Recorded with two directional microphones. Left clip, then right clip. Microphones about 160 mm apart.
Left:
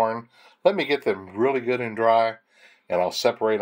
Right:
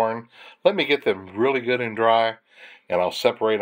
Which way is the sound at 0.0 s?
15° right (ahead or behind).